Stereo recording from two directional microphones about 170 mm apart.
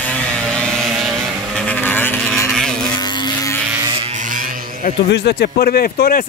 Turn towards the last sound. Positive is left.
turn(degrees=60)  # may be behind; listen again after turning